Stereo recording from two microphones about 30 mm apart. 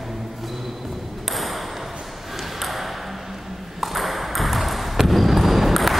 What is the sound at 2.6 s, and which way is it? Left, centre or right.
Ping, centre.